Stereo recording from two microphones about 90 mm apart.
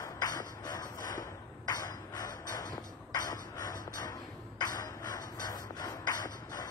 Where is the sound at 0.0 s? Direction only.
45° left (ahead or behind).